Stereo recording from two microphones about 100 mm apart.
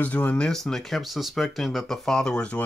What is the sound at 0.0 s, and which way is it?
Speech, 15° left (ahead or behind).